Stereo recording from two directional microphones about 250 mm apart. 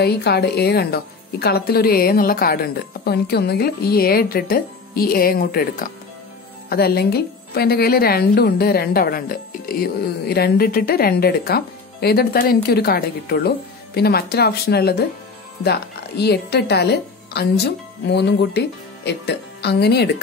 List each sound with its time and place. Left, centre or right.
0.0 s a woman's voice: left